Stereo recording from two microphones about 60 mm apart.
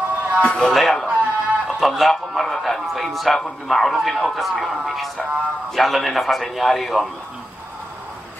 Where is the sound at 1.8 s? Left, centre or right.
Centre.